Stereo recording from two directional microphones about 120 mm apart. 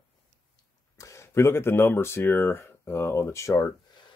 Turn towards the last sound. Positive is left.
turn(degrees=25)  # may be behind; listen again after turning